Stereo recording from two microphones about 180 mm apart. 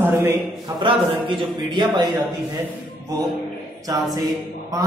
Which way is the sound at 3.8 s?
20° right (ahead or behind).